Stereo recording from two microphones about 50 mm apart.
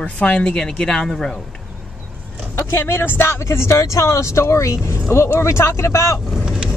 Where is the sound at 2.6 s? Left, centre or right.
Left.